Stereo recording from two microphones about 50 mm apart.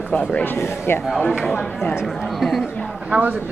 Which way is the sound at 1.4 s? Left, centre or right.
Centre.